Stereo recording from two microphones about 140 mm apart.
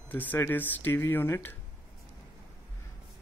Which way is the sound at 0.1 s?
15° left (ahead or behind).